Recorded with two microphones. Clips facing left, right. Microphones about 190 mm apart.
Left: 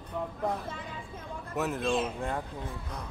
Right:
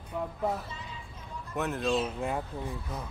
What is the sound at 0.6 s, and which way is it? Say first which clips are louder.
Speech: left 4 dB; 55° left (ahead or behind).